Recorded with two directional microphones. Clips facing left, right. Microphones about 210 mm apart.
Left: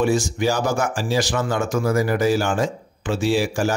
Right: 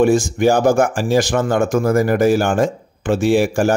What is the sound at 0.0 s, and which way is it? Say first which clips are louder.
Speech: right 6 dB; 50° right (ahead or behind).